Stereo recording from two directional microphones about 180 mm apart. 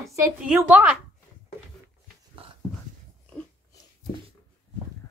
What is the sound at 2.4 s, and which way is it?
Dog, 30° right (ahead or behind).